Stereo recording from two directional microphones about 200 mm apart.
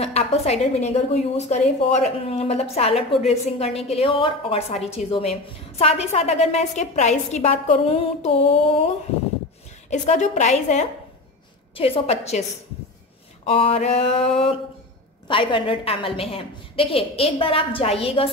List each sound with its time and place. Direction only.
0.0 s a woman's voice: 30° left (ahead or behind)
13.5 s a woman's voice: 30° left (ahead or behind)